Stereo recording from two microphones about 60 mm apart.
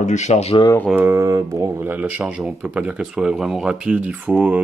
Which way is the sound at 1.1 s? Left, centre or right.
Right.